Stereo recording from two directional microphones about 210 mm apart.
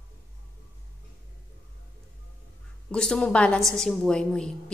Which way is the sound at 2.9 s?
5° left (ahead or behind).